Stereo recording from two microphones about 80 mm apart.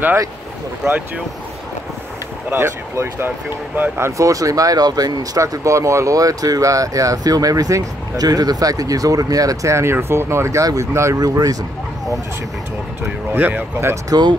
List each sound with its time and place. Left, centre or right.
0.8 s speech: right
2.5 s speech: right
4.2 s speech: right
11.1 s speech: right
13.4 s speech: right
14.0 s speech: right